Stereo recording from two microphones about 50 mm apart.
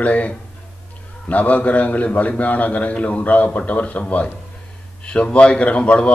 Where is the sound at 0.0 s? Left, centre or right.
Left.